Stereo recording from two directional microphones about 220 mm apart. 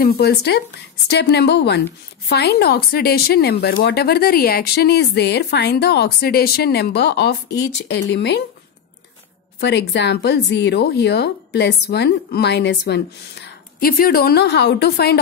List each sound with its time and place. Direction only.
0.0 s speech: 45° left (ahead or behind)
9.6 s speech: 50° left (ahead or behind)